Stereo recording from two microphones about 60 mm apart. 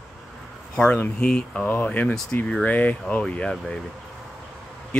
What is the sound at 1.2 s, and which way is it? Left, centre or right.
Speech, centre.